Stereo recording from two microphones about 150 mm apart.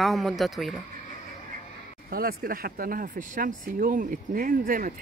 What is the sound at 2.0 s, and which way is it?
Speech, 80° right.